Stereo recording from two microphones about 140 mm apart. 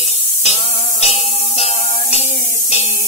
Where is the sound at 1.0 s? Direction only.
45° left (ahead or behind).